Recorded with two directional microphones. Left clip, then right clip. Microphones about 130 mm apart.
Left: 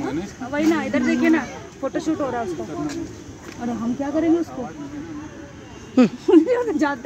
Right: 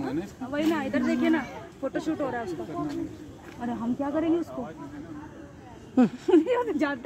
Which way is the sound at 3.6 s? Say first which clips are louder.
Left 5 dB; 10° right (ahead or behind).